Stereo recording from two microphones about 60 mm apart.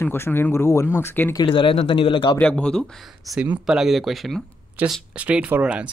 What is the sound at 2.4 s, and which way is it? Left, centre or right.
Speech, centre.